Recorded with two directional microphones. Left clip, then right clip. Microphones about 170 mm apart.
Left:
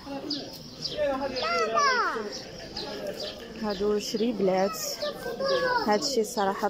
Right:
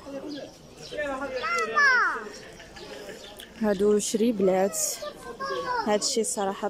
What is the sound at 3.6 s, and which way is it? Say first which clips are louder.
Speech: right 5 dB; 35° right (ahead or behind).